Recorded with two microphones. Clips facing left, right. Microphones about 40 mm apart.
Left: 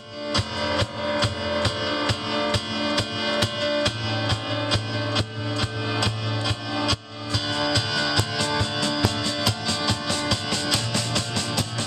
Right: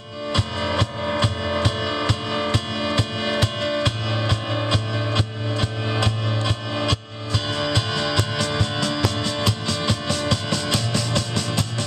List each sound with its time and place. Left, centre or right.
0.3 s music: right
10.3 s drum: centre
11.0 s drum: centre